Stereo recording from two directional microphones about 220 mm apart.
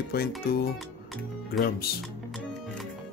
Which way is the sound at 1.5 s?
40° left (ahead or behind).